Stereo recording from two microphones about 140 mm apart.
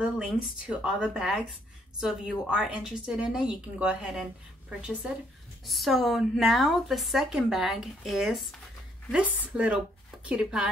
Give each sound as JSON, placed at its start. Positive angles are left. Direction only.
{"t": 0.0, "sound": "a woman's voice", "side_deg": -5}